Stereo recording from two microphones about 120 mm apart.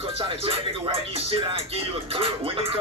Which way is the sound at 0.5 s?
50° right (ahead or behind).